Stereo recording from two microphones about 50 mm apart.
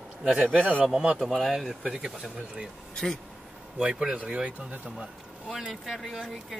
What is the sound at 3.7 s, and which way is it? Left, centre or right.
Speech, centre.